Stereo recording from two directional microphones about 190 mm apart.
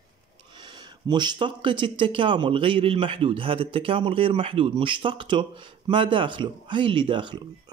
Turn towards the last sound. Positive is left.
turn(degrees=-25)  # may be behind; listen again after turning